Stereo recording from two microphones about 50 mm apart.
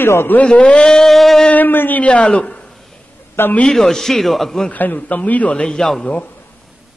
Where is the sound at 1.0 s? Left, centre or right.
Centre.